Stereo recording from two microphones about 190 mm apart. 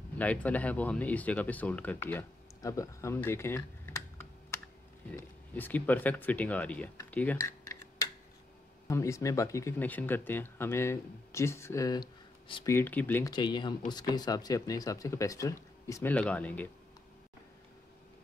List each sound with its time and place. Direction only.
0.2 s speech: 5° left (ahead or behind)
5.1 s speech: 10° left (ahead or behind)
7.0 s cutlery: 10° left (ahead or behind)
8.8 s speech: 15° left (ahead or behind)
12.6 s speech: 10° left (ahead or behind)
13.3 s speech: 25° left (ahead or behind); by 16.6 s 10° left (ahead or behind)